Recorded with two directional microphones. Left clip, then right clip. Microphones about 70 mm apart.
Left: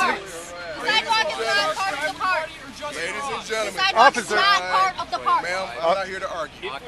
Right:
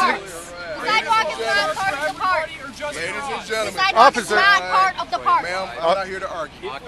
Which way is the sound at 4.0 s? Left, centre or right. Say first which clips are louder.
Right 2 dB; right.